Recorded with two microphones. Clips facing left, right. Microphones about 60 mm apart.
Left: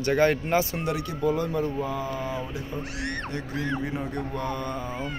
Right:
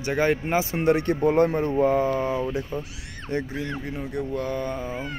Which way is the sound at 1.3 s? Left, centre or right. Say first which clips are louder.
Right 4 dB; right.